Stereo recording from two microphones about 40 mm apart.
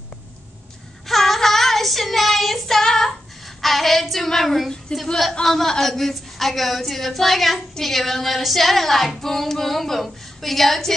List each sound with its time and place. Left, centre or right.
1.0 s child singing: centre
2.8 s child singing: centre
3.4 s child singing: centre
4.9 s speech: left
5.4 s child singing: centre